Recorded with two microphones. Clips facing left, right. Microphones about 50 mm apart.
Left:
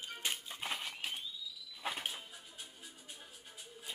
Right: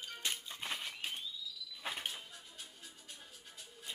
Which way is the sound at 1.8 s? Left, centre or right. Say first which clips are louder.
Left 2 dB; centre.